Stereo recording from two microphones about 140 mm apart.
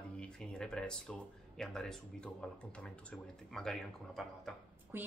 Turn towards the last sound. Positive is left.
turn(degrees=-15)  # may be behind; listen again after turning